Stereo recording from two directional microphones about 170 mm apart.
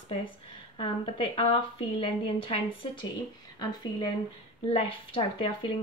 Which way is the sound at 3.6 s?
25° left (ahead or behind).